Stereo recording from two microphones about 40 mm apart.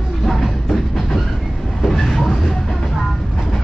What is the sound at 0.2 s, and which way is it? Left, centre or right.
Music, centre.